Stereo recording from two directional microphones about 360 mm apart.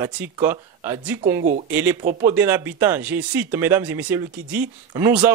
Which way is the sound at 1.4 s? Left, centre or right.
Right.